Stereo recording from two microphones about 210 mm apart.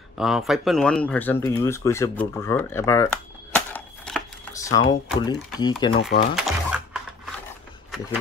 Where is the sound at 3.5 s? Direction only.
5° left (ahead or behind).